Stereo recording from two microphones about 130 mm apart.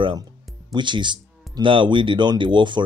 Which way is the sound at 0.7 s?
35° right (ahead or behind).